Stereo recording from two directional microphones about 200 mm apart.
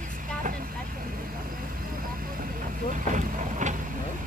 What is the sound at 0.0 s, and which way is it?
Vehicle, 40° right (ahead or behind).